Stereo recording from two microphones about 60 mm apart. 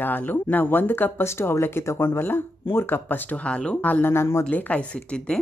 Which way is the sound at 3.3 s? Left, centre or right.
Centre.